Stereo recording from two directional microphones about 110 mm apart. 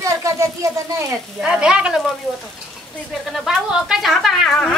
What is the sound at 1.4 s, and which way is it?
Speech, 5° right (ahead or behind).